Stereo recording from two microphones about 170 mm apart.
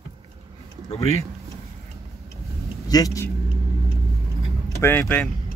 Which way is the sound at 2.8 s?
20° left (ahead or behind).